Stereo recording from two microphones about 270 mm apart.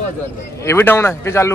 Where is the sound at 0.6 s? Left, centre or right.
Centre.